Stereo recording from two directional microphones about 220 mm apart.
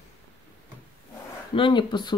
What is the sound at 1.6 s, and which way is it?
Speech, 20° left (ahead or behind).